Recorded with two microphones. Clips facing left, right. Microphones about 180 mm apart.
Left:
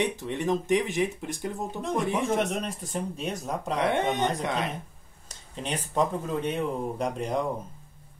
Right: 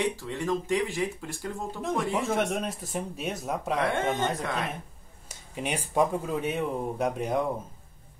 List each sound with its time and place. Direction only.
0.0 s speech: 20° left (ahead or behind)
2.2 s speech: centre (ahead or behind)
3.8 s speech: 20° left (ahead or behind)
5.3 s speech: 10° right (ahead or behind)